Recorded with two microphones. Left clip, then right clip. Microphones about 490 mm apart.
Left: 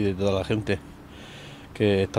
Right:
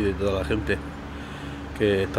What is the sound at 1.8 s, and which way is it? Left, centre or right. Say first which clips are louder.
Speech: even; left.